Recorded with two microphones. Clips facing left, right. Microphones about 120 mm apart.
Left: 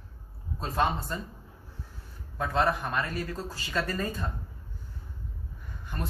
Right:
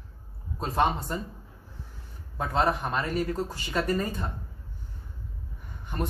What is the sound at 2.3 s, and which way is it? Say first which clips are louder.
Speech: right 1 dB; 20° right (ahead or behind).